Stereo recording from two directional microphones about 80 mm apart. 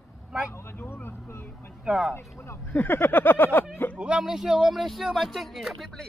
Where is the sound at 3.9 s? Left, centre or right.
Centre.